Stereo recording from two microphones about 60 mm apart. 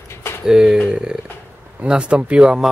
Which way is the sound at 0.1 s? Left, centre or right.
Left.